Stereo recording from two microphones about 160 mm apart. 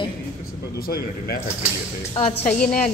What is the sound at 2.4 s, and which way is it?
Speech, 10° left (ahead or behind).